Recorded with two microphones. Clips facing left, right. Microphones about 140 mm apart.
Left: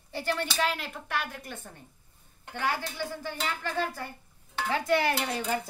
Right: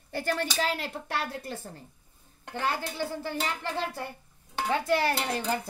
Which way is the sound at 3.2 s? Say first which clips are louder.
Right 2 dB; 25° right (ahead or behind).